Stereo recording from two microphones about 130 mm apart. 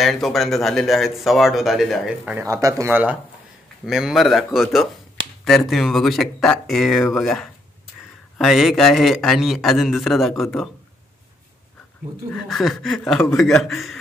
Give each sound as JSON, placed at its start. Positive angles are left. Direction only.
{"t": 0.0, "sound": "speech", "side_deg": 0}
{"t": 2.4, "sound": "speech", "side_deg": -25}
{"t": 3.8, "sound": "speech", "side_deg": -5}
{"t": 12.4, "sound": "speech", "side_deg": 0}